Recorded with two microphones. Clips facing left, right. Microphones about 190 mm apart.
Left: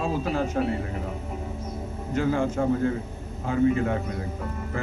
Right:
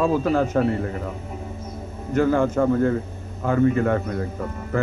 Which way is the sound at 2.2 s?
55° right (ahead or behind).